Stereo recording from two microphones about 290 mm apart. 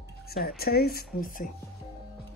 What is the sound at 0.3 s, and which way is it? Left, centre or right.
Speech, left.